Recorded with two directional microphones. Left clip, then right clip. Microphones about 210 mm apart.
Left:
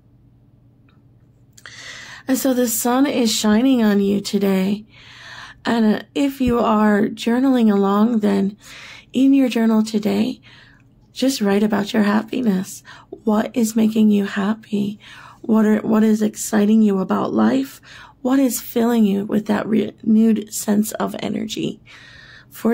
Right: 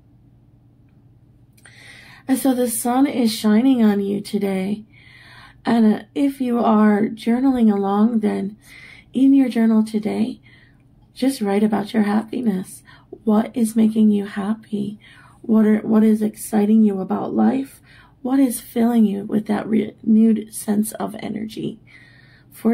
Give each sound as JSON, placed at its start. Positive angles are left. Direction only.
{"t": 1.6, "sound": "a woman's voice", "side_deg": 30}